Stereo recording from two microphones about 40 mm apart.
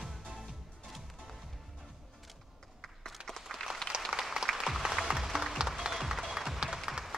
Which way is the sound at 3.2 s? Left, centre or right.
Right.